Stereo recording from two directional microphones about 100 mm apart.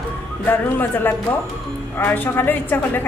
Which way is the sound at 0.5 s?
20° left (ahead or behind).